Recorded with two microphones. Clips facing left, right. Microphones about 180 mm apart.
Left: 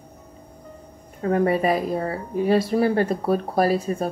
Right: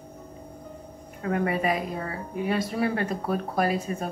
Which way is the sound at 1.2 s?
35° left (ahead or behind).